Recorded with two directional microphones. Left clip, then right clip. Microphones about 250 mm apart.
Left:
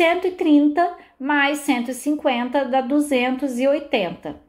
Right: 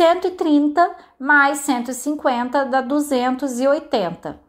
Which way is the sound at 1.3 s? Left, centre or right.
Right.